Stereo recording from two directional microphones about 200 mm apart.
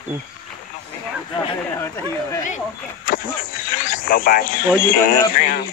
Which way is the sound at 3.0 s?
45° left (ahead or behind).